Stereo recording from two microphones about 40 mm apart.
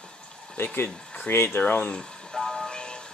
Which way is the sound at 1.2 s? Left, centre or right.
Left.